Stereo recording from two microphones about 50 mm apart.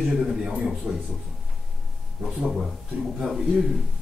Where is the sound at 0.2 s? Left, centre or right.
Centre.